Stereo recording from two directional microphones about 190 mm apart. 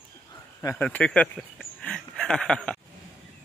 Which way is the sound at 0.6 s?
15° left (ahead or behind).